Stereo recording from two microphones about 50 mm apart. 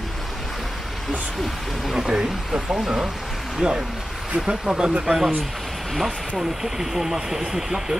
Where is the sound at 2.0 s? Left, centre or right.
Centre.